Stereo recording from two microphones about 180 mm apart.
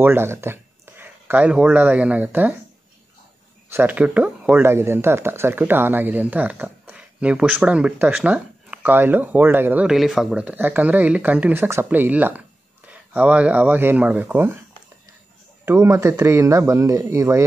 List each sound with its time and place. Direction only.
0.0 s speech: 15° right (ahead or behind)
3.7 s speech: 10° right (ahead or behind)
15.6 s speech: 15° right (ahead or behind)